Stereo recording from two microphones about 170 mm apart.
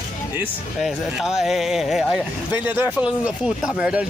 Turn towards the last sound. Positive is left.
turn(degrees=-5)  # may be behind; listen again after turning